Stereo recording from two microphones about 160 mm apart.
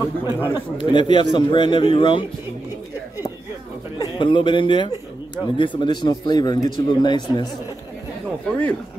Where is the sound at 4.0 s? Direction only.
30° left (ahead or behind).